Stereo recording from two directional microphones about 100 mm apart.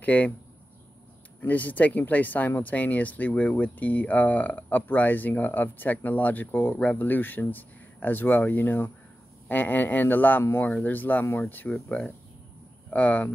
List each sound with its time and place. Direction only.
0.0 s speech: 15° left (ahead or behind)
1.4 s speech: 15° left (ahead or behind)
11.7 s speech: 5° left (ahead or behind)
12.9 s speech: 15° left (ahead or behind)